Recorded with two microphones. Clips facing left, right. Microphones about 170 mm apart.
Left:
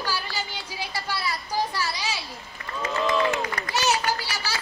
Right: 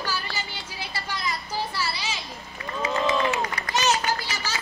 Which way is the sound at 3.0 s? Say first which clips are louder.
Left 2 dB; 50° left (ahead or behind).